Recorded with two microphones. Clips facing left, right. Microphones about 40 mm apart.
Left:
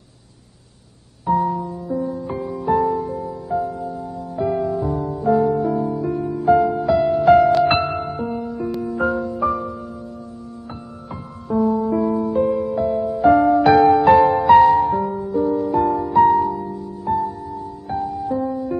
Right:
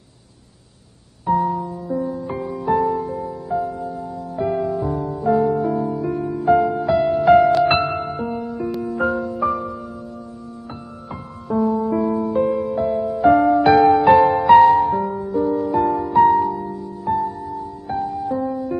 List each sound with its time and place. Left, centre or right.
1.2 s music: centre
11.1 s music: centre
17.1 s music: right
17.8 s music: centre